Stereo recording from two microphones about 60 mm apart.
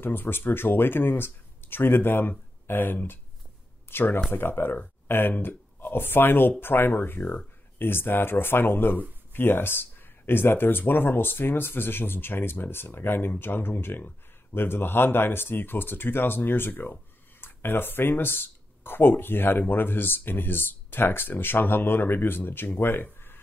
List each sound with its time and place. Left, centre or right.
0.0 s speech: left